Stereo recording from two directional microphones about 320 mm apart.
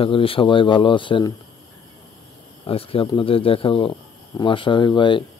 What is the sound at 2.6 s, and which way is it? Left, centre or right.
Speech, centre.